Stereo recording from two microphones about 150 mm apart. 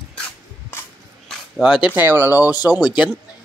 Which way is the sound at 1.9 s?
15° right (ahead or behind).